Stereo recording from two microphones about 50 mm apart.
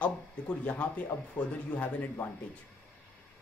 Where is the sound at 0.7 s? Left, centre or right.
Left.